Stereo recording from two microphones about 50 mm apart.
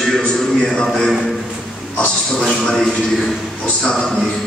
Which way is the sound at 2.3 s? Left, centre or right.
Centre.